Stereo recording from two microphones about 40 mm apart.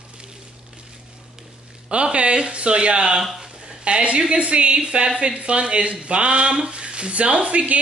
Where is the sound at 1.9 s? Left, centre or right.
Right.